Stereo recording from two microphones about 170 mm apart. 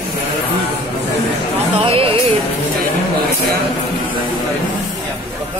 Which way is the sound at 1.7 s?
35° right (ahead or behind).